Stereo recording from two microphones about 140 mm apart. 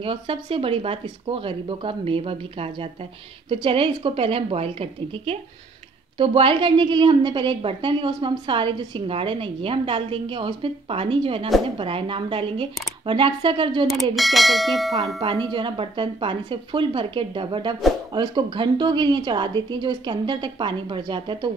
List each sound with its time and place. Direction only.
0.0 s a woman's voice: 40° right (ahead or behind)
14.1 s speech: centre (ahead or behind)
15.1 s a woman's voice: 35° right (ahead or behind)